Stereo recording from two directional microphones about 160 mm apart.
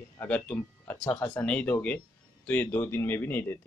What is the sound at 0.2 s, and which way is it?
Speech, 10° left (ahead or behind).